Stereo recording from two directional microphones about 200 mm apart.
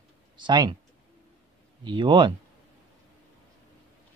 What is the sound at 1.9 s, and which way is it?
Speech, 25° right (ahead or behind).